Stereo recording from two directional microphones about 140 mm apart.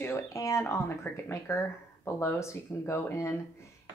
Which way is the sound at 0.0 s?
20° left (ahead or behind).